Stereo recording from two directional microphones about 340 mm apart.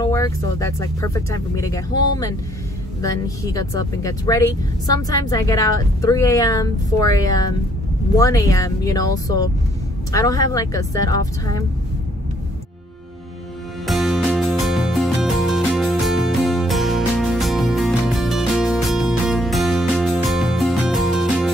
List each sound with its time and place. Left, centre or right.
0.0 s speech: centre
13.8 s music: centre